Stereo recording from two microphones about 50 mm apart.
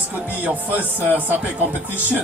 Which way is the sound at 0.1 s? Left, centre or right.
Right.